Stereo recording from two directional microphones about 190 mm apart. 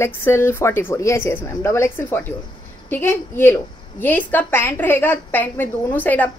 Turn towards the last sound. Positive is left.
turn(degrees=10)  # may be behind; listen again after turning